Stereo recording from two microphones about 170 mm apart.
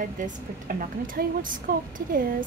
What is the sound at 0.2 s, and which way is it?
A woman's voice, 55° right (ahead or behind).